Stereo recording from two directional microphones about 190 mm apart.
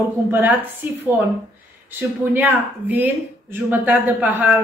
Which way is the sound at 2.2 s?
10° right (ahead or behind).